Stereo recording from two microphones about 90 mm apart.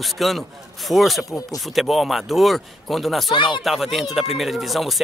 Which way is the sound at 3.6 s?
Centre (ahead or behind).